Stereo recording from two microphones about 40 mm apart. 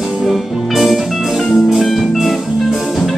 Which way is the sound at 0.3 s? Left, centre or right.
Centre.